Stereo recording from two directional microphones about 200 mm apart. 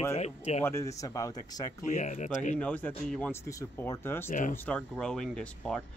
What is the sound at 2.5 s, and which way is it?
Speech, 10° left (ahead or behind).